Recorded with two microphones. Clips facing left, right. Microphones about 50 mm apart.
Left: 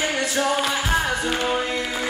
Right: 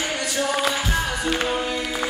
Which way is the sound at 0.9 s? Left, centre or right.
Left.